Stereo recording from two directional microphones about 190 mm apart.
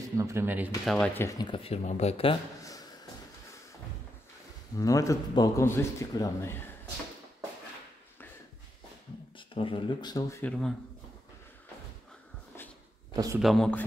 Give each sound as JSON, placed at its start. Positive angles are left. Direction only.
{"t": 0.0, "sound": "speech", "side_deg": -15}
{"t": 0.8, "sound": "a man's voice", "side_deg": 5}
{"t": 1.4, "sound": "speech", "side_deg": 30}
{"t": 4.7, "sound": "a man's voice", "side_deg": 15}
{"t": 9.5, "sound": "speech", "side_deg": 25}
{"t": 10.4, "sound": "speech", "side_deg": 5}
{"t": 13.1, "sound": "speech", "side_deg": -20}
{"t": 13.4, "sound": "speech", "side_deg": 0}